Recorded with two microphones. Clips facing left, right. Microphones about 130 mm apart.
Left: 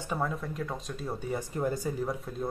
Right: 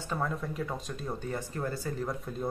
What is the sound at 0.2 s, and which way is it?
Speech, centre (ahead or behind).